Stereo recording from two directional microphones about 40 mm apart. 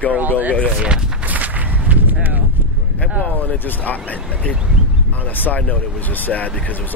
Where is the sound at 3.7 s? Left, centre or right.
Left.